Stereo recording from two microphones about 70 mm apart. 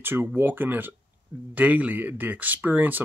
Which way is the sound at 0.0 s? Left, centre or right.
Right.